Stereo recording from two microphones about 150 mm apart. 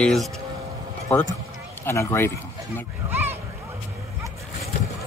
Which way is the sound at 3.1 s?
15° right (ahead or behind).